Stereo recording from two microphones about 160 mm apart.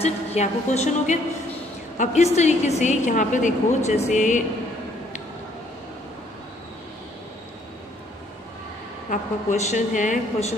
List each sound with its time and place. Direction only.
0.0 s speech: 40° left (ahead or behind)
9.1 s speech: 50° left (ahead or behind)